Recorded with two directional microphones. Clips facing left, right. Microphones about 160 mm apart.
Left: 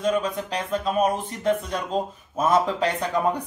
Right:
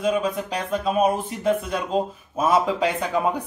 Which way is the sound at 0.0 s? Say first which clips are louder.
Right 1 dB; 10° right (ahead or behind).